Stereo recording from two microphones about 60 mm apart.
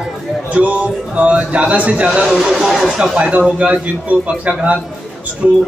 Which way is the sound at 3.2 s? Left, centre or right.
Centre.